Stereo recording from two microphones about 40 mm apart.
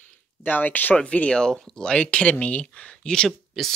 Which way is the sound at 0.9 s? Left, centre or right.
Left.